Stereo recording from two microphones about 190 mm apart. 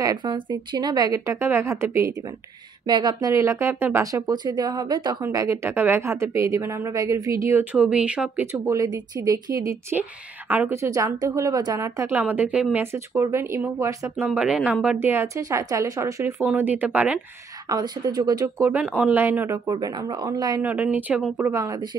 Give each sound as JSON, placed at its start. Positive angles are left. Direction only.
{"t": 0.0, "sound": "speech", "side_deg": -20}
{"t": 7.7, "sound": "speech", "side_deg": -5}
{"t": 17.6, "sound": "speech", "side_deg": -20}
{"t": 20.6, "sound": "speech", "side_deg": -10}